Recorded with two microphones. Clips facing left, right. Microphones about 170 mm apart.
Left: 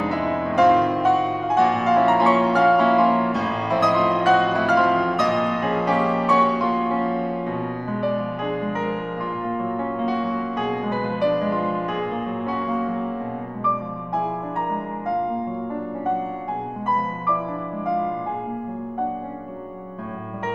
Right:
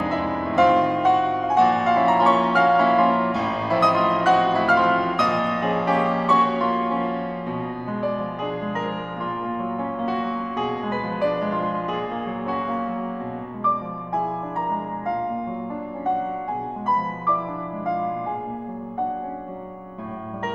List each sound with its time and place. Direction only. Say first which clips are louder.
0.0 s music: left 1 dB; centre (ahead or behind)
6.1 s music: left 2 dB; 15° left (ahead or behind)
6.6 s music: left 1 dB; centre (ahead or behind)
8.1 s music: left 2 dB; 10° left (ahead or behind)
9.6 s music: left 2 dB; centre (ahead or behind)
10.7 s music: left 2 dB; 15° left (ahead or behind)